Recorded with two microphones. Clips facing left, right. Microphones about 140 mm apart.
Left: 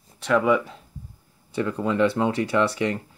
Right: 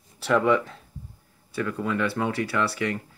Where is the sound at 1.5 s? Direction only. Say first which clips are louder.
Left 3 dB; 25° left (ahead or behind).